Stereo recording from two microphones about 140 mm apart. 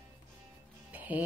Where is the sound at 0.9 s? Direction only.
10° right (ahead or behind).